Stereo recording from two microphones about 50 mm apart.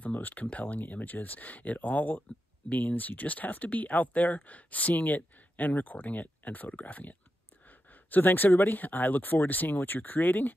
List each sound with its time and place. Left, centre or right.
0.0 s speech: left